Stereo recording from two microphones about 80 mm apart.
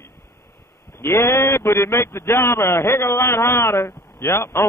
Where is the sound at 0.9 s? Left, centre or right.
Left.